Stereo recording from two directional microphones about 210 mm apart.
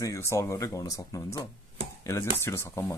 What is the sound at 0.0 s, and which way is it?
Speech, 15° left (ahead or behind).